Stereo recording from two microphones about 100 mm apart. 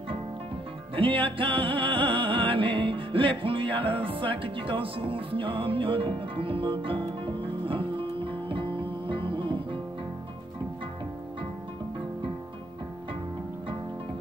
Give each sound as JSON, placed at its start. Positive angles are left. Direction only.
{"t": 0.9, "sound": "music", "side_deg": -60}